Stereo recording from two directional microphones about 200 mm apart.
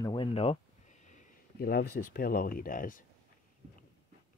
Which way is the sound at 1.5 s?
50° left (ahead or behind).